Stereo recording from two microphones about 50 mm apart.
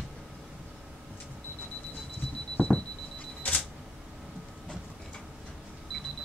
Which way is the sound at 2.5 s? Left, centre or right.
Left.